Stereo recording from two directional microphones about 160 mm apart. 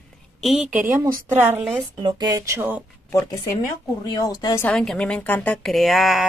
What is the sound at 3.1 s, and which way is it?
Speech, 20° left (ahead or behind).